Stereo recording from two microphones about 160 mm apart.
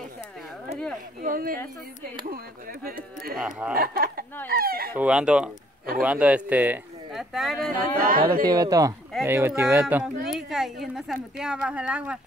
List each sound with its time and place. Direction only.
1.2 s speech: 60° right (ahead or behind)
3.3 s speech: 5° right (ahead or behind)
3.7 s speech: 70° right (ahead or behind)
4.9 s speech: 5° right (ahead or behind)
8.0 s speech: 60° right (ahead or behind)
8.5 s speech: 20° right (ahead or behind)